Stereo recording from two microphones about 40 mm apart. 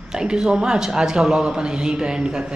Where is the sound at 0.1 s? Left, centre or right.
Centre.